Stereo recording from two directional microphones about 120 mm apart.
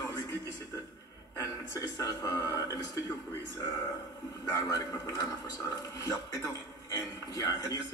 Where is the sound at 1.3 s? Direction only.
30° left (ahead or behind).